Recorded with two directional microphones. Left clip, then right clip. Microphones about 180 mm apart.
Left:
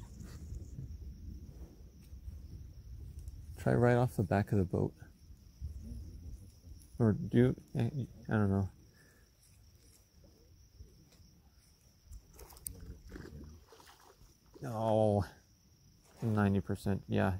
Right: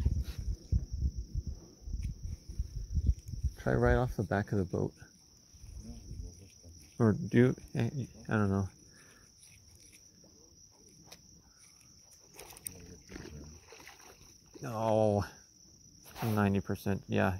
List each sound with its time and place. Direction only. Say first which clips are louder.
3.5 s speech: even; 25° left (ahead or behind)
7.0 s speech: right 3 dB; 10° right (ahead or behind)
13.1 s rowboat: right 3 dB; 10° right (ahead or behind)
13.7 s rowboat: right 6 dB; centre (ahead or behind)
14.5 s a sound: right 2 dB; 5° left (ahead or behind)
16.3 s speech: right 2 dB; 5° left (ahead or behind)